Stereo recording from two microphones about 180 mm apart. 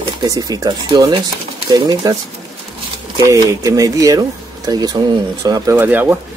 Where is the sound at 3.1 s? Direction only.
20° right (ahead or behind).